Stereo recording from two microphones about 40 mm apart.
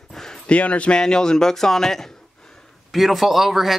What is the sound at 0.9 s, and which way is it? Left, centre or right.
Speech, centre.